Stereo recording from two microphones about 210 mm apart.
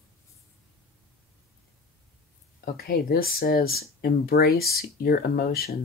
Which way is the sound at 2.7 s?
45° left (ahead or behind).